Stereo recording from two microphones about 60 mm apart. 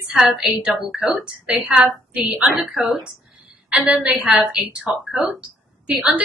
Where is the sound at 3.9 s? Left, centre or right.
Centre.